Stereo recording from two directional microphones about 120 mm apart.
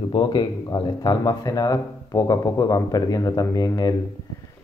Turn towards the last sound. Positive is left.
turn(degrees=35)  # may be behind; listen again after turning